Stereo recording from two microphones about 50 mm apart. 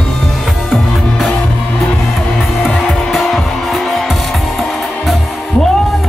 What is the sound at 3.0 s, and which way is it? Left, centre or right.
Music, centre.